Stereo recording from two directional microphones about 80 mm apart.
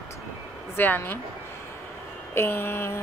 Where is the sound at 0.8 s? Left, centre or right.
Left.